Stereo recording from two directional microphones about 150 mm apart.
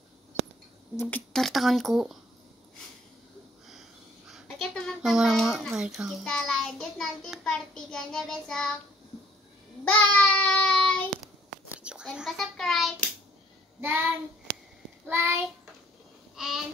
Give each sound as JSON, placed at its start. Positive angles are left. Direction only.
{"t": 1.0, "sound": "speech", "side_deg": 5}
{"t": 4.3, "sound": "speech", "side_deg": 0}
{"t": 9.8, "sound": "child singing", "side_deg": 10}
{"t": 11.7, "sound": "a child's voice", "side_deg": -5}
{"t": 13.7, "sound": "child singing", "side_deg": -15}
{"t": 14.5, "sound": "a sound", "side_deg": 0}
{"t": 15.0, "sound": "child singing", "side_deg": -15}
{"t": 16.3, "sound": "babbling", "side_deg": 0}